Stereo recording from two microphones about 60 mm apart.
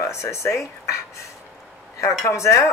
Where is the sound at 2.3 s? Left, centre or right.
Left.